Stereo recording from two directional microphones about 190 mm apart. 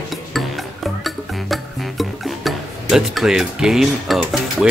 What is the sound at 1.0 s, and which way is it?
Music, centre (ahead or behind).